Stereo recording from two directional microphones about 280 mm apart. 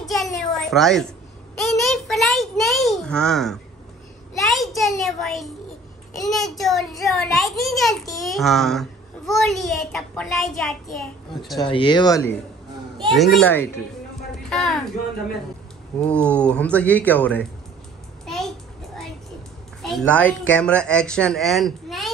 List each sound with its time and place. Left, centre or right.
0.0 s a sound: centre
4.4 s a child's voice: centre
11.6 s speech: centre
13.1 s a child's voice: centre
16.0 s a child's voice: centre
18.2 s a sound: centre
19.8 s a child's voice: centre